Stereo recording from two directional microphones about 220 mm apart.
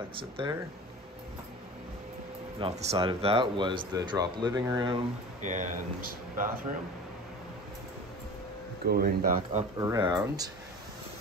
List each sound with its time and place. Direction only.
0.1 s speech: 25° right (ahead or behind)
2.6 s speech: 30° right (ahead or behind)
5.4 s speech: 35° right (ahead or behind)
8.8 s speech: 45° right (ahead or behind)
9.8 s speech: 15° right (ahead or behind)